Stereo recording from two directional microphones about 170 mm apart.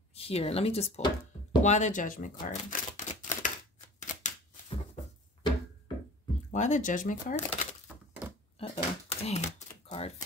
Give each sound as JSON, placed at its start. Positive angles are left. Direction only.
{"t": 0.1, "sound": "speech", "side_deg": 35}
{"t": 1.6, "sound": "speech", "side_deg": 45}
{"t": 2.4, "sound": "a sound", "side_deg": 50}
{"t": 4.0, "sound": "shuffling cards", "side_deg": 45}
{"t": 6.5, "sound": "speech", "side_deg": 45}
{"t": 8.5, "sound": "typewriter", "side_deg": 35}